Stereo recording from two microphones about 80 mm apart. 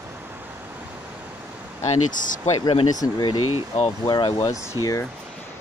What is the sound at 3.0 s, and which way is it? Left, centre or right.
Speech, left.